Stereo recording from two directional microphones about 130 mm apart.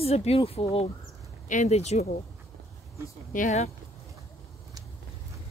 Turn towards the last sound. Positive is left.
turn(degrees=70)  # may be behind; listen again after turning